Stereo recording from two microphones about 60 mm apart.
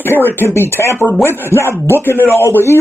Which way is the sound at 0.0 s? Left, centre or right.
Left.